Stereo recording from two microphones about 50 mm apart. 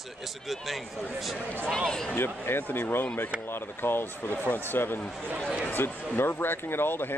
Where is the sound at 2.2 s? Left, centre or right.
Left.